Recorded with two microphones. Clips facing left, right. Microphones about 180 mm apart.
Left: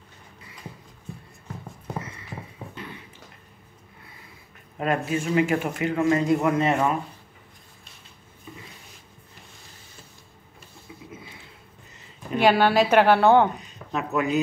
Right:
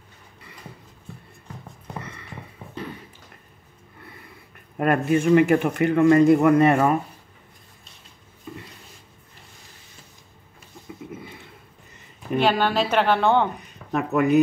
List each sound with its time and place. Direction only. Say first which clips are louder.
4.7 s speech: right 5 dB; 55° right (ahead or behind)
12.4 s a woman's voice: left 2 dB; 10° left (ahead or behind)
13.6 s speech: right 4 dB; 55° right (ahead or behind)